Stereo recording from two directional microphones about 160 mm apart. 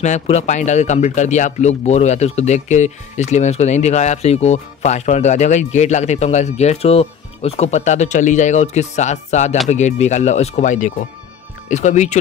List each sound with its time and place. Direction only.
0.0 s speech: 45° left (ahead or behind)